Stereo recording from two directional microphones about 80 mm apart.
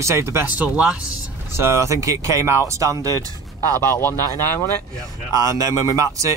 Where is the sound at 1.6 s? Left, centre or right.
Right.